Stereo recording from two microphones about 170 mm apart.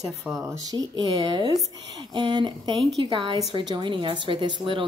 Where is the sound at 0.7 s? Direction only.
25° right (ahead or behind).